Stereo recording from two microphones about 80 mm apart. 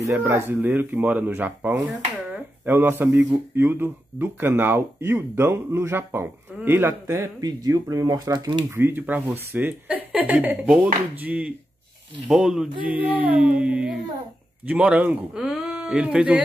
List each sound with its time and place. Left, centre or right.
0.2 s speech: right
7.1 s speech: right
7.4 s speech: right
8.7 s speech: right
12.3 s speech: centre
12.8 s a sound: centre
15.4 s a sound: centre